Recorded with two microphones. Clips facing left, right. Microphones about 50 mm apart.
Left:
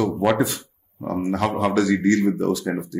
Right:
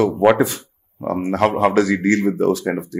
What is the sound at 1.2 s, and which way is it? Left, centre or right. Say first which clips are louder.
A man's voice: right 6 dB; right.